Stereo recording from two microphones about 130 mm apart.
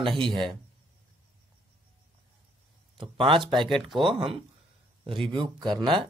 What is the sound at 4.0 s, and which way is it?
Speech, 45° right (ahead or behind).